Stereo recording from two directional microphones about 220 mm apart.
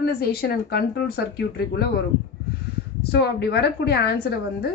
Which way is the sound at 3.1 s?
50° left (ahead or behind).